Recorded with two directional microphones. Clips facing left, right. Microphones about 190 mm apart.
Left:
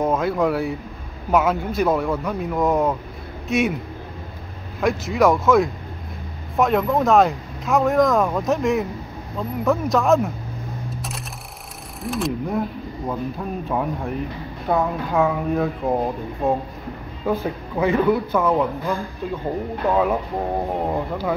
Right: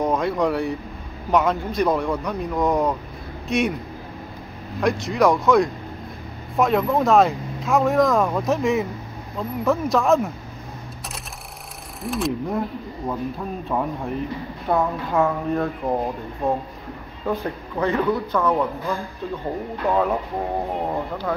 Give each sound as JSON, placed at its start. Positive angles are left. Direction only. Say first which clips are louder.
{"t": 0.0, "sound": "a man's voice", "louder": "left 1 dB", "side_deg": 0}
{"t": 4.7, "sound": "speech", "louder": "left 1 dB", "side_deg": 0}
{"t": 12.0, "sound": "speech", "louder": "even", "side_deg": 0}
{"t": 19.9, "sound": "speech", "louder": "left 1 dB", "side_deg": 20}